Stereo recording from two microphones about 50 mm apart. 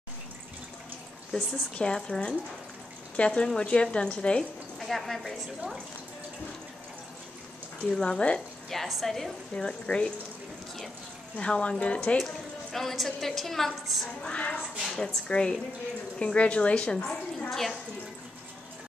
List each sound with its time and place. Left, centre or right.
1.3 s a woman's voice: centre
4.7 s a woman's voice: centre
7.9 s a woman's voice: centre
8.6 s a woman's voice: centre
9.7 s a woman's voice: centre
11.3 s a woman's voice: centre
12.7 s a woman's voice: centre
14.2 s a woman's voice: left
14.6 s a woman's voice: centre
15.2 s a woman's voice: centre
16.9 s a woman's voice: centre
17.5 s a woman's voice: centre